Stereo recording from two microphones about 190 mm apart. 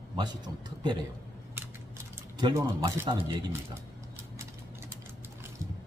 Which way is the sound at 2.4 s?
20° right (ahead or behind).